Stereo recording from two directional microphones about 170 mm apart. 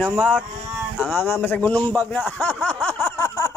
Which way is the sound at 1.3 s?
10° left (ahead or behind).